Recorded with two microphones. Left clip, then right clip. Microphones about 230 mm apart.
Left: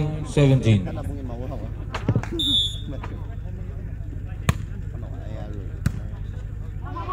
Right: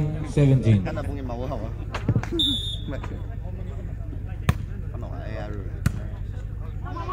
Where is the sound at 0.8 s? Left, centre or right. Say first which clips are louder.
Right 3 dB; right.